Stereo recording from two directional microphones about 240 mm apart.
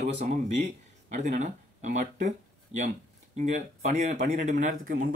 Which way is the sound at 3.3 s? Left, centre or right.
Right.